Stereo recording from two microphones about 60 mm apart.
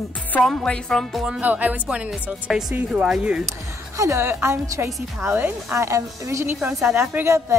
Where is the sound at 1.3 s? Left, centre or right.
Right.